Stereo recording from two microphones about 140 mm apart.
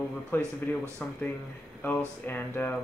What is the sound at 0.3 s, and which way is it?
Speech, 15° left (ahead or behind).